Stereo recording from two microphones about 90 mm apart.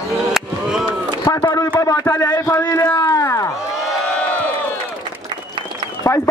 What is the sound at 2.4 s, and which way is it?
Speech, 45° left (ahead or behind).